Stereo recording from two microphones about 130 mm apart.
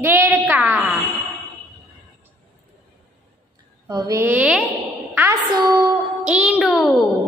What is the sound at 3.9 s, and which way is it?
Speech, 30° right (ahead or behind).